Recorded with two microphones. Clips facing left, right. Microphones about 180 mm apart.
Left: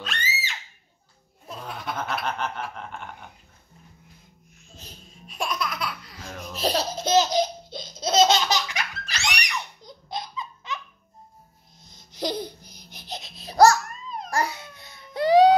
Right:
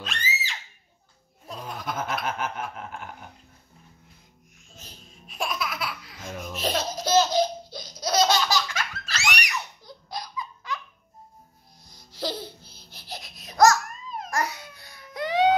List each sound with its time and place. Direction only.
0.0 s a sound: centre (ahead or behind)
1.5 s laughter: centre (ahead or behind)
5.2 s music: centre (ahead or behind)
6.5 s laughter: 35° left (ahead or behind)
7.1 s laughter: 20° left (ahead or behind)
11.8 s laughter: 20° left (ahead or behind)
14.3 s baby cry: 30° left (ahead or behind)